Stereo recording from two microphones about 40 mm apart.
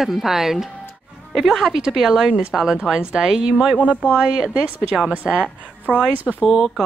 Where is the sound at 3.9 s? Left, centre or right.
Left.